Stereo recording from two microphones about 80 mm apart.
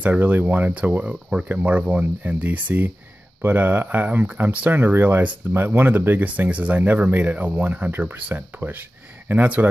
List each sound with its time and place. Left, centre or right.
0.0 s speech: right